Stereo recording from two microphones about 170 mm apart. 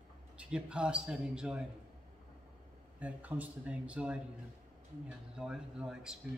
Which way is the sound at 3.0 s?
10° right (ahead or behind).